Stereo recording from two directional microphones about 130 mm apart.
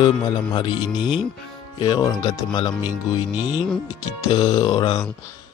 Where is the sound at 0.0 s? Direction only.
35° left (ahead or behind).